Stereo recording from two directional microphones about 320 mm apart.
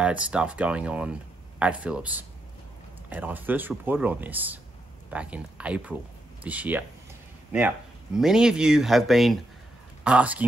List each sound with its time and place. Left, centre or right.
0.0 s speech: centre